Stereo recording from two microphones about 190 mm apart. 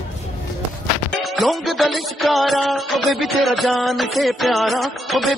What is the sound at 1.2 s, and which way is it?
Music, centre (ahead or behind).